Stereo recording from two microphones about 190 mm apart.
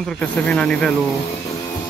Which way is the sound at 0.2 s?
5° left (ahead or behind).